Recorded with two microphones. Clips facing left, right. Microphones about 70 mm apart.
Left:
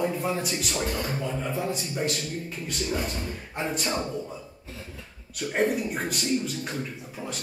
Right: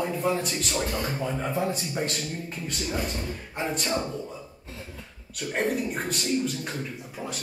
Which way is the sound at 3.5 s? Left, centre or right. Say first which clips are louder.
Right 1 dB; centre.